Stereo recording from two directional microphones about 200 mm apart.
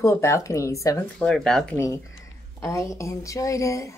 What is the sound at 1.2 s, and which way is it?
Speech, 5° left (ahead or behind).